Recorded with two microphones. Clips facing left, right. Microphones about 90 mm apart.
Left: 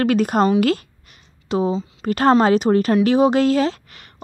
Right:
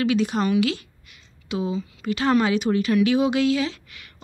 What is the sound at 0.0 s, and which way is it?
Speech, 50° left (ahead or behind).